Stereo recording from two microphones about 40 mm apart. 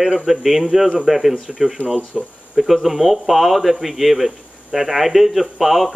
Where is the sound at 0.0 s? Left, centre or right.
Centre.